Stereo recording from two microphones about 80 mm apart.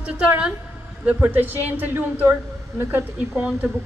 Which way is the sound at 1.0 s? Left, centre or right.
Right.